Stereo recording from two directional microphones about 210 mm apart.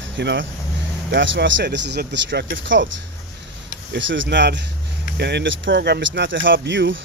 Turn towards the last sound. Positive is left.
turn(degrees=-60)  # may be behind; listen again after turning